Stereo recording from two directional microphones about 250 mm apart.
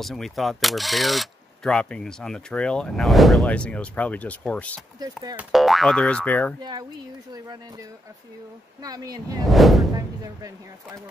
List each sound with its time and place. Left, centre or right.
0.0 s speech: centre
5.0 s speech: centre
6.6 s speech: centre
8.8 s speech: centre
9.5 s speech: centre
9.9 s speech: centre